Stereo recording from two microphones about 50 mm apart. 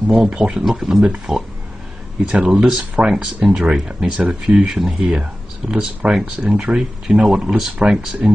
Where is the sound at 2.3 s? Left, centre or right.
Centre.